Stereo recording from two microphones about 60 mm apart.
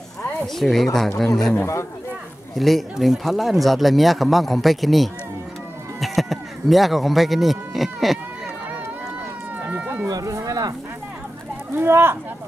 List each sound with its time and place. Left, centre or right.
0.6 s speech: centre
10.0 s a sound: right
11.7 s speech: right